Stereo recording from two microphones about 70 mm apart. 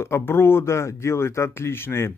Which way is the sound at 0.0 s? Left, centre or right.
Left.